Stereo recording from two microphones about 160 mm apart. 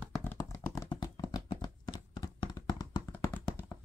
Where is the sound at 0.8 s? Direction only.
25° left (ahead or behind).